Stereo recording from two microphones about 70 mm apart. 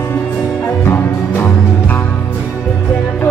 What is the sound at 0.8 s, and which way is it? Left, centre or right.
Music, left.